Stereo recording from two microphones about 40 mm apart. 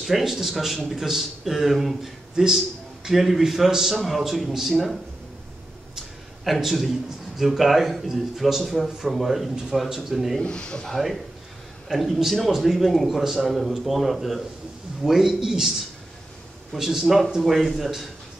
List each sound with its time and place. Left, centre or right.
0.0 s a man's voice: centre
2.3 s a man's voice: centre
3.9 s speech: centre
6.4 s speech: centre
10.4 s a man's voice: left
11.9 s a man's voice: centre